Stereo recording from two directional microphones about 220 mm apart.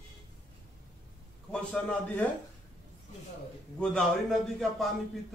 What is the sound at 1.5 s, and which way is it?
Speech, 5° left (ahead or behind).